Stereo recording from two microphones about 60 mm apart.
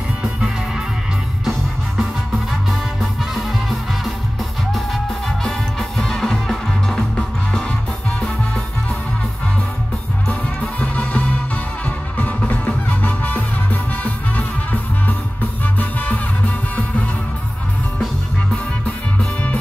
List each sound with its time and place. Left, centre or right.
0.2 s music: centre
3.4 s music: centre
5.4 s music: centre
10.2 s music: left